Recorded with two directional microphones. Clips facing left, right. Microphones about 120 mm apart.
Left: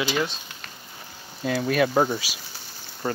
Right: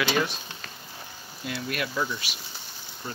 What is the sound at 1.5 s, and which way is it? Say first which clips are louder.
Speech: left 10 dB; 90° left.